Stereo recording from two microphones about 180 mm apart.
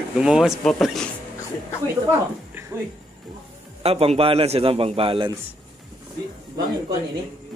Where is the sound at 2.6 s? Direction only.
15° right (ahead or behind).